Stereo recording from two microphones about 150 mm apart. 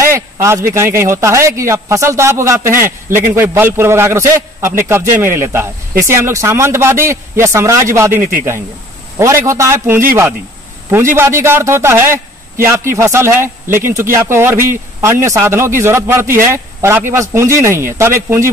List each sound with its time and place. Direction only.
0.1 s a man's voice: 20° right (ahead or behind)
11.1 s a man's voice: 15° right (ahead or behind)